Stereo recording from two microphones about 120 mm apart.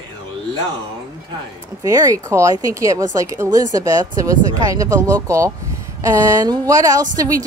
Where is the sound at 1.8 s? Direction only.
25° right (ahead or behind).